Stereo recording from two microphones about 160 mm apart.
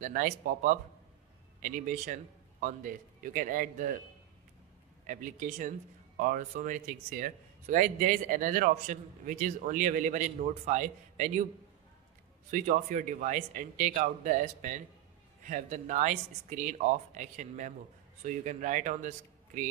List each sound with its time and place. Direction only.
0.0 s speech: 55° right (ahead or behind)
5.0 s speech: 55° right (ahead or behind)
12.4 s speech: 50° right (ahead or behind)